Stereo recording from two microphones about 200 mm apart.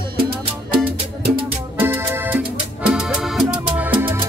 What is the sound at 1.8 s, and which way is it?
Music, 10° right (ahead or behind).